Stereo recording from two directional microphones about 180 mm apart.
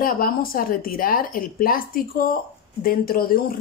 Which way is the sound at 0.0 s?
55° left (ahead or behind).